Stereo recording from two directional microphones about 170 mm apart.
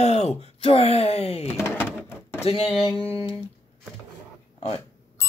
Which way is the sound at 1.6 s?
5° right (ahead or behind).